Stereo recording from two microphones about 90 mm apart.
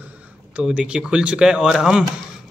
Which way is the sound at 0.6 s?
10° right (ahead or behind).